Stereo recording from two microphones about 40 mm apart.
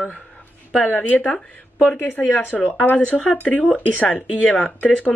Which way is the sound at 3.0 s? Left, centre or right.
Left.